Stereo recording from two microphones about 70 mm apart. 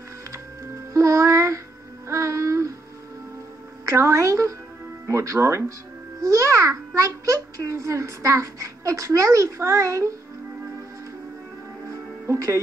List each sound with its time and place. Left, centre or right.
0.9 s music: right
3.8 s a woman's voice: right
6.2 s music: right
7.2 s a woman's voice: right
11.9 s music: right